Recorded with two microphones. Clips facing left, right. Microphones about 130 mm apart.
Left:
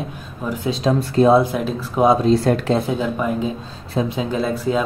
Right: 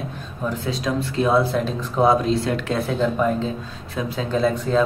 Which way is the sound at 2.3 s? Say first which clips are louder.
Left 6 dB; 40° left (ahead or behind).